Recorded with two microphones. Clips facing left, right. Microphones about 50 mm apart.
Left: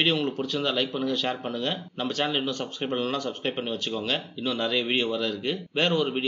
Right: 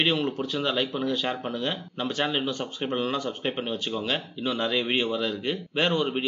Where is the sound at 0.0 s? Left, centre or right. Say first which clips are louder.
Even; centre.